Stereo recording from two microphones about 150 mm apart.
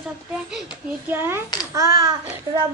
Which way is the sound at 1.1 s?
15° right (ahead or behind).